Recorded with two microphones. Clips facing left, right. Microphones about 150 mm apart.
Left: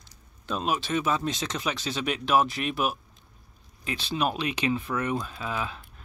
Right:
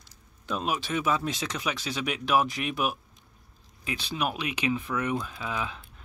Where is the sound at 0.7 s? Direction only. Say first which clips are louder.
Left 1 dB; 15° right (ahead or behind).